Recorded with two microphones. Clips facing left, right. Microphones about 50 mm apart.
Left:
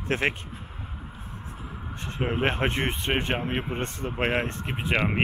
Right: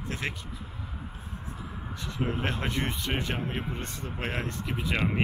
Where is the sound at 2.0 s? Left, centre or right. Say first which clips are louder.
Left 5 dB; left.